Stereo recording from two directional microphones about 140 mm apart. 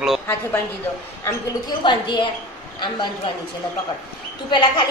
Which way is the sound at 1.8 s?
35° left (ahead or behind).